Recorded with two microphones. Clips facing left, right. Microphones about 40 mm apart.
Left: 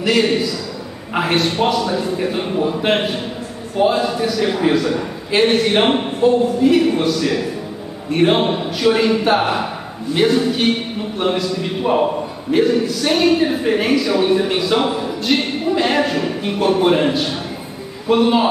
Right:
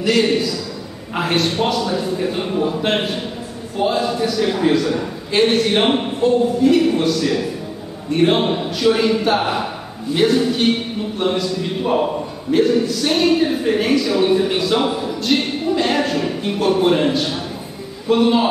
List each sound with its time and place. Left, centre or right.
0.0 s a man's voice: centre